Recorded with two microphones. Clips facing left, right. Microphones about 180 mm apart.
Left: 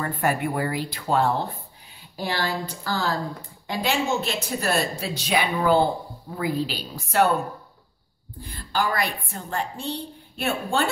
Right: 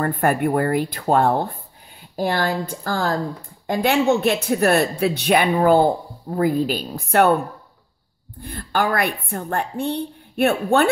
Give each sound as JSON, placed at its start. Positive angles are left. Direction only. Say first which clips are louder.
{"t": 0.0, "sound": "speech", "louder": "right 5 dB", "side_deg": -55}
{"t": 8.4, "sound": "speech", "louder": "right 4 dB", "side_deg": -60}